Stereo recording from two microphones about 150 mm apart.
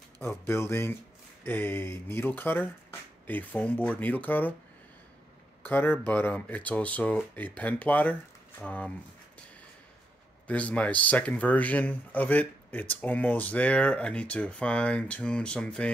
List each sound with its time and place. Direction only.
0.2 s speech: 15° left (ahead or behind)
5.6 s speech: 15° left (ahead or behind)
10.4 s speech: 10° left (ahead or behind)